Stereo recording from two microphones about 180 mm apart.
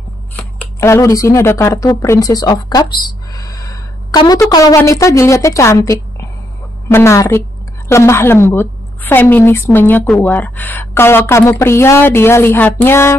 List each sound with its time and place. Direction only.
0.4 s a woman's voice: 10° left (ahead or behind)